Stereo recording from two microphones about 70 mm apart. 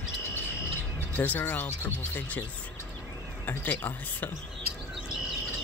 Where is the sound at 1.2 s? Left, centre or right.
Left.